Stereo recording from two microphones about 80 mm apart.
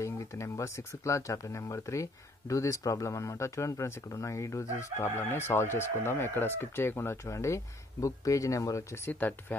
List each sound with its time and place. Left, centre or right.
0.0 s speech: left
9.1 s speech: left